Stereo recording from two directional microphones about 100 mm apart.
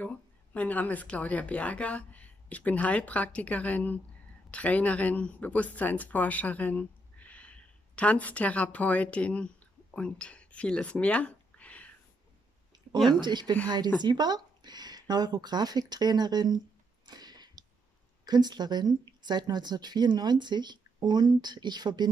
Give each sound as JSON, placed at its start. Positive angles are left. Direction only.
{"t": 0.0, "sound": "speech", "side_deg": 15}
{"t": 12.7, "sound": "a sound", "side_deg": -45}
{"t": 13.2, "sound": "speech", "side_deg": -50}